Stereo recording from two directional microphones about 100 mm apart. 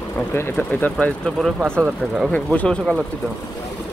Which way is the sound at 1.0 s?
15° left (ahead or behind).